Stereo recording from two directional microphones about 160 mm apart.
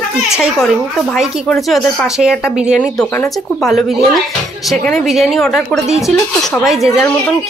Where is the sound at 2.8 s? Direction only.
10° left (ahead or behind).